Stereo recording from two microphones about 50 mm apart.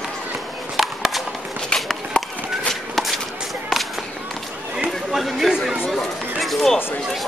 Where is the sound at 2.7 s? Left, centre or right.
Centre.